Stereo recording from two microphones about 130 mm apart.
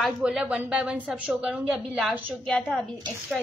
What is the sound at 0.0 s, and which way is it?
A woman's voice, 5° right (ahead or behind).